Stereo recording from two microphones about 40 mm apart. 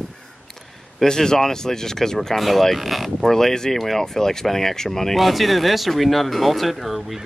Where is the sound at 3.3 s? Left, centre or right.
Centre.